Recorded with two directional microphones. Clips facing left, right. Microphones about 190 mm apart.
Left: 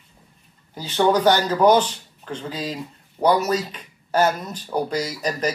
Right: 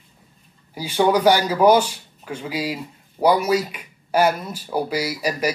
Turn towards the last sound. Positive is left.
turn(degrees=-10)  # may be behind; listen again after turning